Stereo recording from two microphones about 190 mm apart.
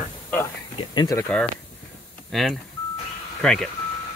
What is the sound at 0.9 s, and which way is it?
Speech, 20° left (ahead or behind).